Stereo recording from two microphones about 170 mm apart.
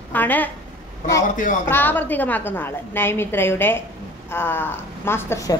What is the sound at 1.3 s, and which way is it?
Speech, 50° left (ahead or behind).